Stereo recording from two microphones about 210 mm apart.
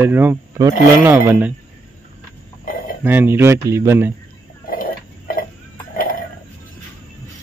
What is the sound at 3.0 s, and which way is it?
Speech, 10° right (ahead or behind).